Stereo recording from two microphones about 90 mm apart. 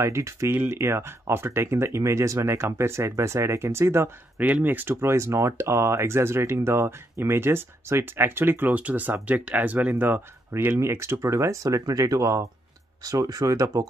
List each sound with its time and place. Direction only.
0.0 s speech: 30° right (ahead or behind)